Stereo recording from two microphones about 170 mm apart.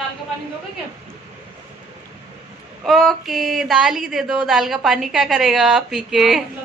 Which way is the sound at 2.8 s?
Centre (ahead or behind).